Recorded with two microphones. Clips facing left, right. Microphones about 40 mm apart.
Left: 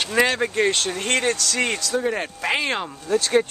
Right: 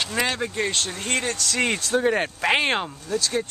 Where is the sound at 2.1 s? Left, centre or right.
Right.